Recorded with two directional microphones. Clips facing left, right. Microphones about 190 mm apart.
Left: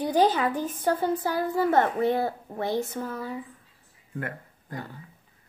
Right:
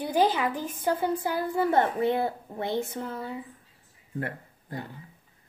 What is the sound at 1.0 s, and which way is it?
A woman's voice, 15° right (ahead or behind).